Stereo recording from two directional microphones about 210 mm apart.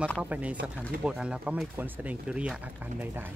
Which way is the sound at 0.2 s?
5° right (ahead or behind).